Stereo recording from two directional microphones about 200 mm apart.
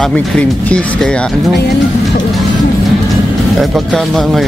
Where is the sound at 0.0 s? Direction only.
5° left (ahead or behind).